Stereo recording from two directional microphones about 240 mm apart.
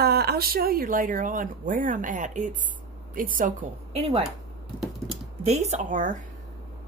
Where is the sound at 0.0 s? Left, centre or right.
Right.